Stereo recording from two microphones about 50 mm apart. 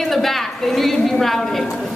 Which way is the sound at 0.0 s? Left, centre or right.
Centre.